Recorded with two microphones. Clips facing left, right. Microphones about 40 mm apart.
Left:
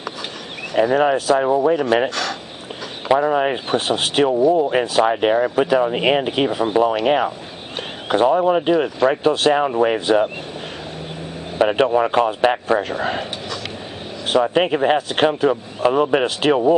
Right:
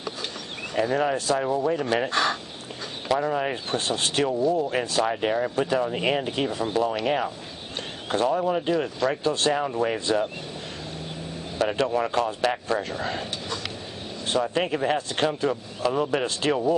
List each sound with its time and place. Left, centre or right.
0.7 s speech: left
2.0 s speech: right
3.1 s speech: left
11.5 s speech: left
14.3 s speech: left